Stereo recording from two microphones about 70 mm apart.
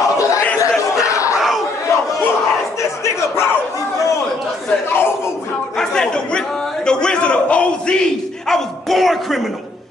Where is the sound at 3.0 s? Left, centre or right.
Left.